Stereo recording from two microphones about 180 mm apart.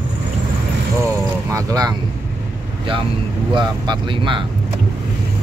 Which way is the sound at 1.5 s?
20° right (ahead or behind).